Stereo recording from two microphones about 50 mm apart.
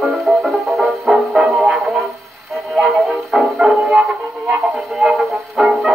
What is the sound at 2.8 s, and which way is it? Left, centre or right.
Music, centre.